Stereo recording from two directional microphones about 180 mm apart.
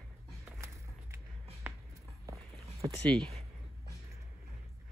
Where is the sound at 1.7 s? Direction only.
10° right (ahead or behind).